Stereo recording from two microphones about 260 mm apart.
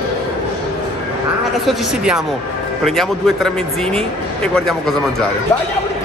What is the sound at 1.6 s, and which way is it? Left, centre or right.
Speech, centre.